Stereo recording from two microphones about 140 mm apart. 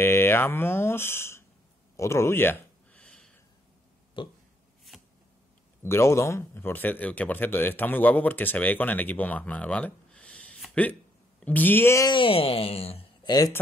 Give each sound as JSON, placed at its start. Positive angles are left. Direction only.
{"t": 0.0, "sound": "speech", "side_deg": 15}
{"t": 2.0, "sound": "a sound", "side_deg": 20}
{"t": 4.2, "sound": "burping", "side_deg": 35}
{"t": 4.9, "sound": "a sound", "side_deg": 0}
{"t": 5.8, "sound": "speech", "side_deg": 20}
{"t": 12.1, "sound": "speech", "side_deg": 40}
{"t": 13.2, "sound": "speech", "side_deg": 30}